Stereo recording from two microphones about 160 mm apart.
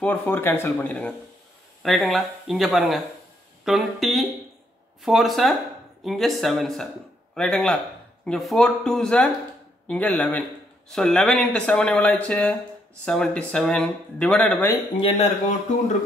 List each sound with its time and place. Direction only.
0.0 s speech: 10° left (ahead or behind)
15.0 s speech: 35° left (ahead or behind)